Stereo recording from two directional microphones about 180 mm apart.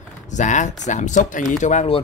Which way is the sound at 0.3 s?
40° left (ahead or behind).